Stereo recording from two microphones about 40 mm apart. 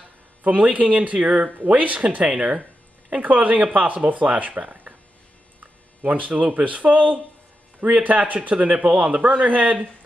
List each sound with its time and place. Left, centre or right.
0.4 s speech: right